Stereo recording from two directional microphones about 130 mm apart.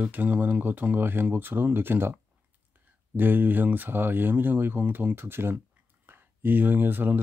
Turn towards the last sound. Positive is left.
turn(degrees=-15)  # may be behind; listen again after turning